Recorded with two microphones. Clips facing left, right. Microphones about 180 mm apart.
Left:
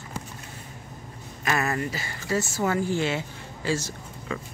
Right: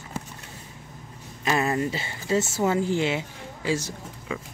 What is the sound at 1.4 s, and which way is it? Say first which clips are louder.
Speech: right 2 dB; 25° right (ahead or behind).